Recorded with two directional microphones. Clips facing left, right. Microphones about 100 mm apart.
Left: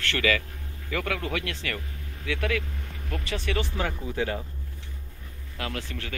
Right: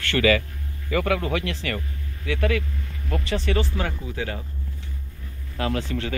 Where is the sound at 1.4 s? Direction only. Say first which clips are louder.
Right 4 dB; 70° left (ahead or behind).